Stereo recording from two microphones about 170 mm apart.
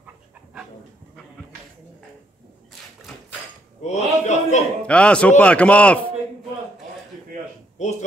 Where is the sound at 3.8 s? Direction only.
40° left (ahead or behind).